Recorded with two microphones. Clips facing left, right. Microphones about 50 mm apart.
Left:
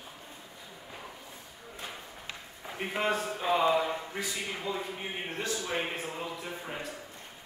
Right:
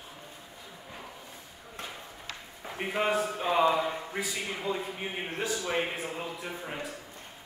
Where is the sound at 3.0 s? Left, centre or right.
Centre.